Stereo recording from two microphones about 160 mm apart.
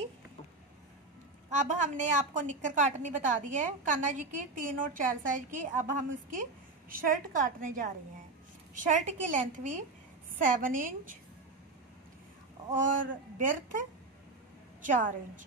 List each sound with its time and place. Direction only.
1.5 s a woman's voice: 50° right (ahead or behind)
12.7 s a man's voice: 55° right (ahead or behind)